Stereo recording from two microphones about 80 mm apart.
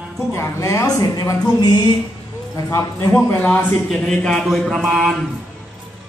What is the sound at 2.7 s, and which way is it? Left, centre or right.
Speech, left.